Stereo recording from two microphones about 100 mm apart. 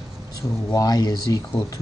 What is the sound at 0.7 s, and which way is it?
Speech, 40° left (ahead or behind).